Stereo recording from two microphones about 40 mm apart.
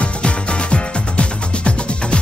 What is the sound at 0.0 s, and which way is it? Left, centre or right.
Music, left.